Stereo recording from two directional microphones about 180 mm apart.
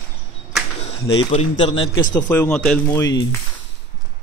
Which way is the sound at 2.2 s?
10° left (ahead or behind).